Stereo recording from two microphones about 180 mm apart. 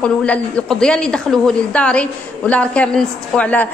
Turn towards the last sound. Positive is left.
turn(degrees=10)  # may be behind; listen again after turning